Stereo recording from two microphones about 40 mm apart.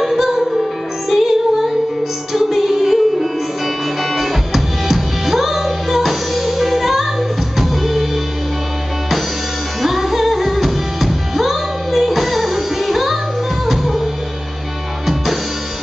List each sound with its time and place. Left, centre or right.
0.0 s music: centre
9.8 s music: centre